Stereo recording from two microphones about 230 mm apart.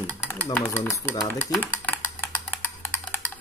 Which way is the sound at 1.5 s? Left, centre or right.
Centre.